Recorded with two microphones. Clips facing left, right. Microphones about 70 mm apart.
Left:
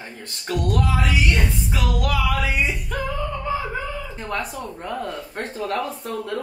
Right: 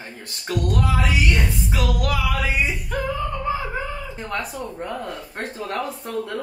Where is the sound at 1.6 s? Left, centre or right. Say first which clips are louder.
Even; centre.